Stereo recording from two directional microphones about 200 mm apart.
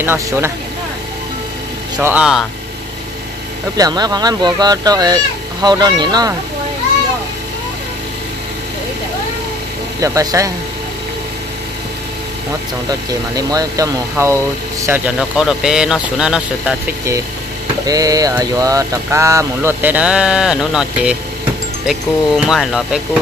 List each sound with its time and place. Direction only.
0.0 s speech: 10° right (ahead or behind)
2.0 s speech: 5° right (ahead or behind)
3.7 s speech: 20° right (ahead or behind)
9.9 s speech: 15° right (ahead or behind)
13.1 s speech: 20° right (ahead or behind)
17.8 s speech: 20° right (ahead or behind); by 22.8 s centre (ahead or behind)